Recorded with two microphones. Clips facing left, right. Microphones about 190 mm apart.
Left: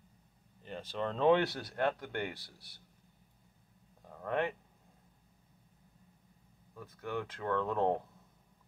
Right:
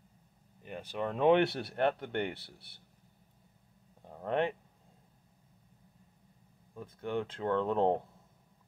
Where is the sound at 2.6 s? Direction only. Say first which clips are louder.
Right 1 dB; 60° right (ahead or behind).